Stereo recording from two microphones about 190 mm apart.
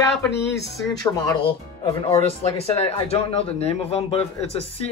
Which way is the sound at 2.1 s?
30° left (ahead or behind).